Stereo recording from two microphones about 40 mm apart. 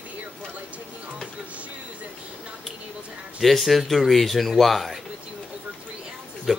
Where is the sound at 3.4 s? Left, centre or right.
Centre.